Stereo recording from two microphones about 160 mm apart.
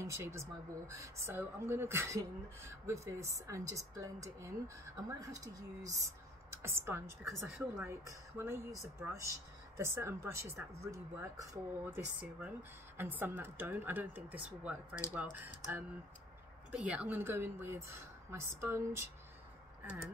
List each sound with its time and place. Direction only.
0.0 s a woman's voice: 15° right (ahead or behind)